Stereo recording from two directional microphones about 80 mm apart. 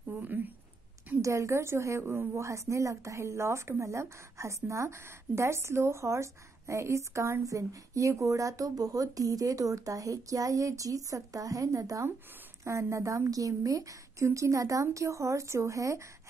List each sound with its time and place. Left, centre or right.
0.2 s a woman's voice: right
1.2 s speech: right